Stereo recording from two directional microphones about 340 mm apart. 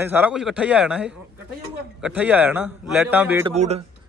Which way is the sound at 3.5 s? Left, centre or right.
Centre.